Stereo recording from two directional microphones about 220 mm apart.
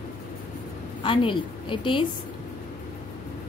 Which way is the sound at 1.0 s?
25° left (ahead or behind).